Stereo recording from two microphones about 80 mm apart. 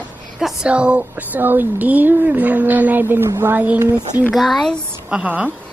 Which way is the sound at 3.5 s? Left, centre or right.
Centre.